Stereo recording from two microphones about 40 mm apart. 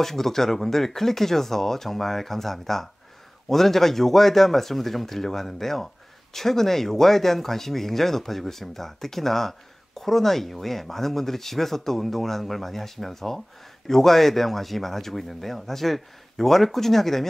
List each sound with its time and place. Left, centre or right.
0.0 s speech: centre